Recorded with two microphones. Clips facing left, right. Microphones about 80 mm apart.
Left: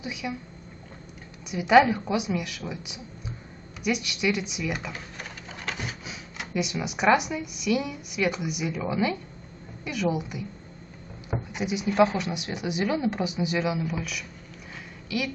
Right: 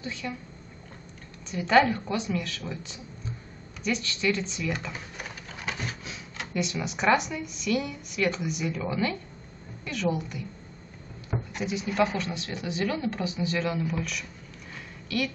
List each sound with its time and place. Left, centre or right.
0.0 s speech: centre
1.4 s a woman's voice: centre
4.9 s sewing machine: centre
5.8 s printer: centre
6.3 s speech: centre